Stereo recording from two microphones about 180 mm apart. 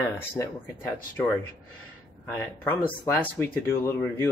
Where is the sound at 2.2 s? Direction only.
10° left (ahead or behind).